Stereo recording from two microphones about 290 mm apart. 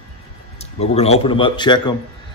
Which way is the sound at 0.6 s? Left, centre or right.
Left.